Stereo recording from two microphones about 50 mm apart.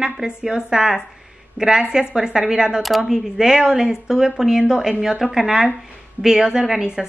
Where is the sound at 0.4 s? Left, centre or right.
Centre.